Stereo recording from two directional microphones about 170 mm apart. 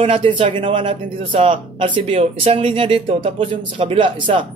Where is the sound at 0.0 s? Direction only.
35° right (ahead or behind).